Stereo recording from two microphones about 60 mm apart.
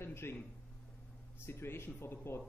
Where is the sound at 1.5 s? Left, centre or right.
Left.